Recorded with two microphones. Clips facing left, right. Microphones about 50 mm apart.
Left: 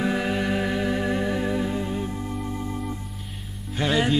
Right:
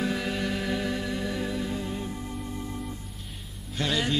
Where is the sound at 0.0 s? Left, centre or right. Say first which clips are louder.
Left 4 dB; left.